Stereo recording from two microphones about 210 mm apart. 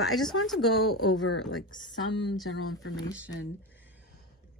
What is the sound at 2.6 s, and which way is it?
Speech, 80° left.